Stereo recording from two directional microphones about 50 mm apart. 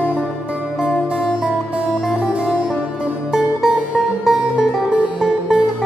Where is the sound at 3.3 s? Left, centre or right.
Centre.